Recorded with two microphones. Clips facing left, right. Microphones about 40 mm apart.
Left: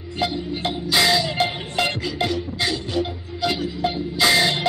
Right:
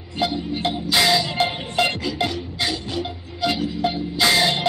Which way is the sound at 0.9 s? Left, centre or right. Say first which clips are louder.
Even; centre.